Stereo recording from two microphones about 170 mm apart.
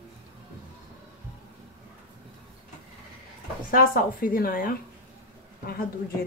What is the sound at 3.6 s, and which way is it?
Speech, 55° left (ahead or behind).